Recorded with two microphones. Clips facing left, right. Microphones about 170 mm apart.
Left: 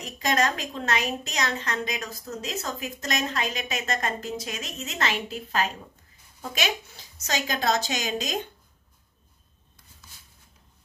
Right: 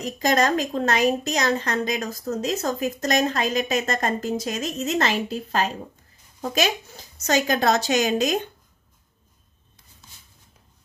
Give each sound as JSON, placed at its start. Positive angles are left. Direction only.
{"t": 0.2, "sound": "a woman's voice", "side_deg": -40}